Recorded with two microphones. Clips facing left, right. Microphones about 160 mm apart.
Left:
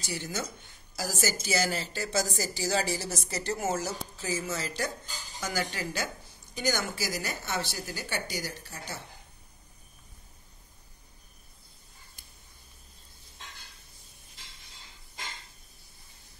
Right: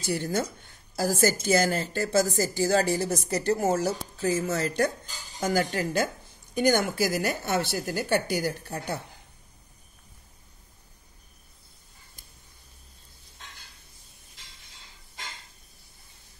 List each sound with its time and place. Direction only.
0.0 s a woman's voice: 55° right (ahead or behind)